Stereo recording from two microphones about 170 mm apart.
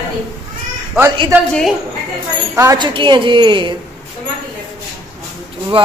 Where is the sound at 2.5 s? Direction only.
20° right (ahead or behind).